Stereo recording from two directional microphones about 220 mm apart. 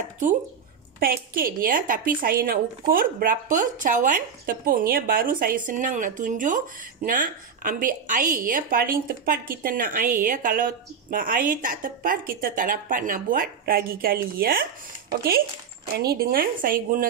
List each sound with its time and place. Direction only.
0.9 s a woman's voice: 40° right (ahead or behind)